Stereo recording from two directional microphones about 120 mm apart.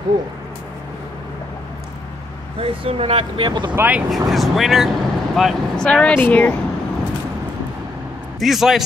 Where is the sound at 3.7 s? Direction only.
15° right (ahead or behind).